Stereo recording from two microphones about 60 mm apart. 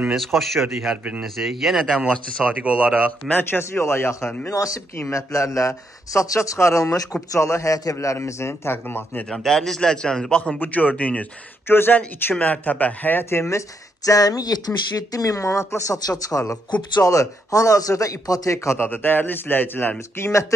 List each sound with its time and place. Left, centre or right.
0.1 s a man's voice: centre
2.4 s speech: right
3.3 s speech: left
4.5 s speech: left
5.1 s speech: left
8.2 s speech: left
9.3 s a man's voice: centre
10.6 s speech: left
11.6 s speech: left
12.3 s speech: left
13.2 s speech: left
18.8 s a man's voice: left
20.2 s speech: left